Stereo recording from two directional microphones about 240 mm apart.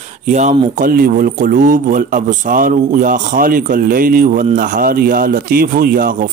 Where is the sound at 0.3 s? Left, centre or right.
Right.